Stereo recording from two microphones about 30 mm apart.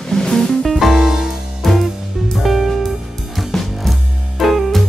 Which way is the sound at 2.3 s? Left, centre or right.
Centre.